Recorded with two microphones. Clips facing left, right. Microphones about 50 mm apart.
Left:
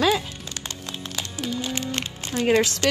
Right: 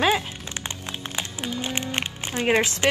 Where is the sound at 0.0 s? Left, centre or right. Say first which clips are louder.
Even; right.